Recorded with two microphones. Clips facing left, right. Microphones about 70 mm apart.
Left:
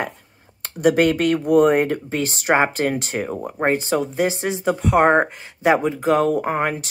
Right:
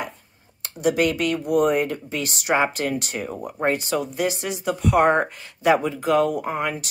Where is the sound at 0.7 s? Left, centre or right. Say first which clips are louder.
Left 4 dB; left.